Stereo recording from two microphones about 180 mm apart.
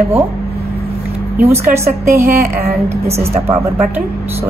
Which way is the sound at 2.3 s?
60° right (ahead or behind).